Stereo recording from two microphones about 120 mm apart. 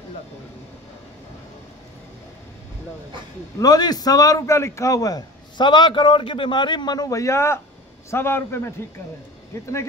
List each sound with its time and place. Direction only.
3.5 s a man's voice: 30° left (ahead or behind)